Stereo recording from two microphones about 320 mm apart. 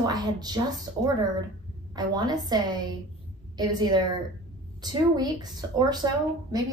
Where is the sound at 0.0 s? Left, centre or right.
Centre.